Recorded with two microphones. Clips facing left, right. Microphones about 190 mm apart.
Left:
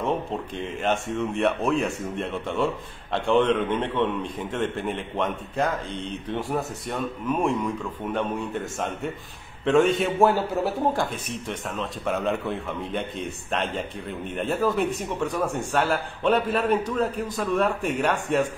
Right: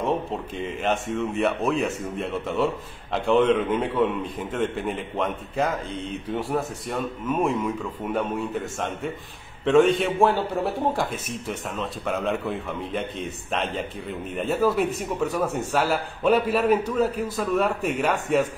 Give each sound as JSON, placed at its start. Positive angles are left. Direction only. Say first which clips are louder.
{"t": 0.6, "sound": "speech", "louder": "even", "side_deg": 0}